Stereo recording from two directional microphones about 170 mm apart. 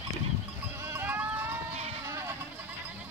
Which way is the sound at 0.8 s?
15° right (ahead or behind).